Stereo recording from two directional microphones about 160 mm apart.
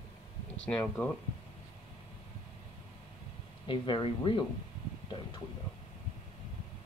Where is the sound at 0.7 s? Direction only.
10° left (ahead or behind).